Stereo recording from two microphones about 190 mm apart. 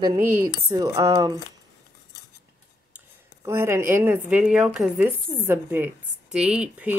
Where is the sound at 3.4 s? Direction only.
15° right (ahead or behind).